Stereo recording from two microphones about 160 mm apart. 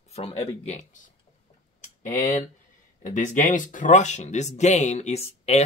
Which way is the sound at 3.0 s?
50° left (ahead or behind).